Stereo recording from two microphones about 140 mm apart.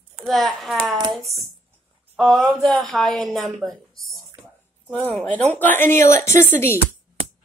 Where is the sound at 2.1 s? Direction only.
Centre (ahead or behind); by 6.8 s 20° left (ahead or behind).